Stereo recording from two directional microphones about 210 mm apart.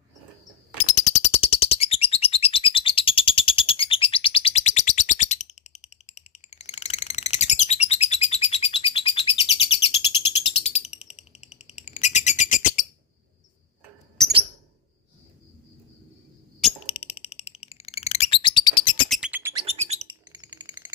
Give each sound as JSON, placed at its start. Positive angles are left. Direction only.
{"t": 0.7, "sound": "bird", "side_deg": 35}
{"t": 14.2, "sound": "a sound", "side_deg": 0}
{"t": 16.8, "sound": "bird", "side_deg": 30}
{"t": 19.0, "sound": "bird", "side_deg": -5}
{"t": 19.5, "sound": "bird", "side_deg": -30}
{"t": 20.2, "sound": "a sound", "side_deg": -10}